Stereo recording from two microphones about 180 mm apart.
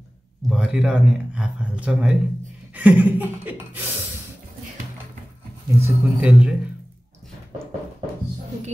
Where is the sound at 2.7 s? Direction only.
10° right (ahead or behind).